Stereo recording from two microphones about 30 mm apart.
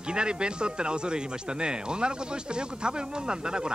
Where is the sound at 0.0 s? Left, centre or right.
Right.